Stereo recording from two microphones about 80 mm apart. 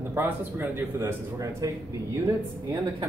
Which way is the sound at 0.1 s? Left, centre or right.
Right.